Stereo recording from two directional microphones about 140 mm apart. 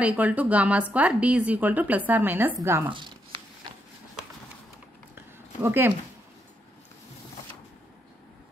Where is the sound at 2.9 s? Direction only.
35° right (ahead or behind).